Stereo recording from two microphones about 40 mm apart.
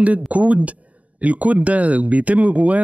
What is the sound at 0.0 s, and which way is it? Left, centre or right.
Speech, right.